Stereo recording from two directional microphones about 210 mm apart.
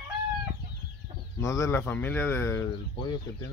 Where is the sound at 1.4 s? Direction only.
15° left (ahead or behind).